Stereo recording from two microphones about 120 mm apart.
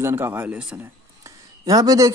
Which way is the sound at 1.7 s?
30° right (ahead or behind).